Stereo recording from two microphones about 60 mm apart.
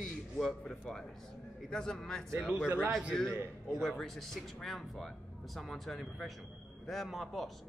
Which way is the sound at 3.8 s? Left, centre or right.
Centre.